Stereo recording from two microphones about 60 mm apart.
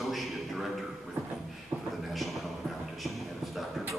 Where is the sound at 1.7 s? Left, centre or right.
Right.